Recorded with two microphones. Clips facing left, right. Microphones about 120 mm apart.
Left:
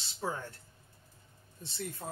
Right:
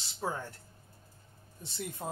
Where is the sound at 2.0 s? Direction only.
20° right (ahead or behind).